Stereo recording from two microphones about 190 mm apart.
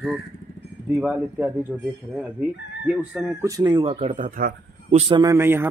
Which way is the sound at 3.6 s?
25° right (ahead or behind).